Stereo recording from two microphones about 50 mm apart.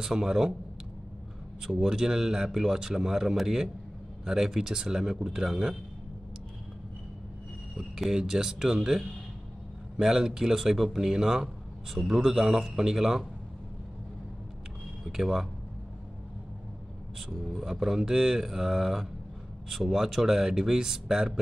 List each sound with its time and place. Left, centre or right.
0.0 s a man's voice: centre
1.6 s a man's voice: centre
7.7 s a man's voice: centre
15.0 s a man's voice: centre
17.3 s a man's voice: centre